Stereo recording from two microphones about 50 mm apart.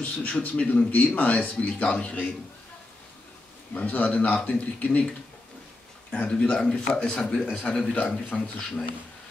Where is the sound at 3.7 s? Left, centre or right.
Left.